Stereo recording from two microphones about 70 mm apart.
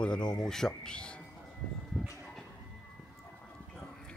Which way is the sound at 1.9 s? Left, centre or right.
Centre.